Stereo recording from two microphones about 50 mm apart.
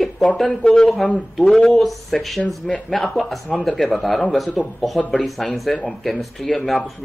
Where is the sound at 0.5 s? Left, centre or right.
Centre.